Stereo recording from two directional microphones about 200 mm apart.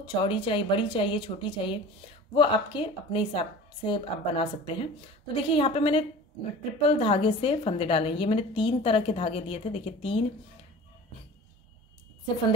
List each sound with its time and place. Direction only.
0.0 s a woman's voice: 25° left (ahead or behind)